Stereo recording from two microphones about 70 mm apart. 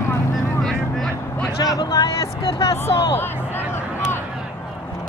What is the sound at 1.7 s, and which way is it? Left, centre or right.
Vehicle, left.